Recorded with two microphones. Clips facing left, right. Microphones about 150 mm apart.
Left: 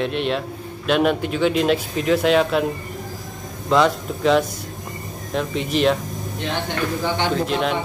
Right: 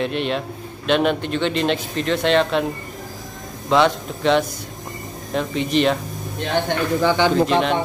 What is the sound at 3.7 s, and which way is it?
Speech, centre (ahead or behind).